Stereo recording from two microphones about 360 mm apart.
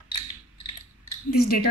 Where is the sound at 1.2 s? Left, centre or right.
Left.